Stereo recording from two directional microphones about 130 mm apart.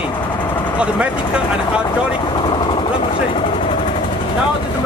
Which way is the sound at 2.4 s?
40° left (ahead or behind).